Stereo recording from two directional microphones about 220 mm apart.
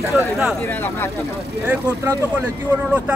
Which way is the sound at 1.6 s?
10° right (ahead or behind).